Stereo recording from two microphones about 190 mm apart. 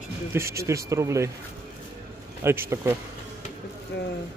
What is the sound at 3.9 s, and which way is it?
Speech, 65° left (ahead or behind).